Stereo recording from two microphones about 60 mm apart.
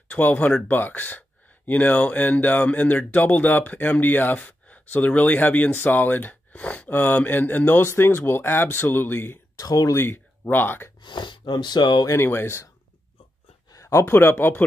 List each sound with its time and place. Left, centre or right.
0.1 s speech: left
9.6 s speech: left
9.9 s speech: left
12.1 s speech: left
13.7 s a sound: left
14.0 s speech: left